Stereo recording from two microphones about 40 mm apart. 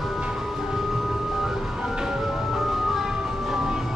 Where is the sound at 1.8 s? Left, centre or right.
Centre.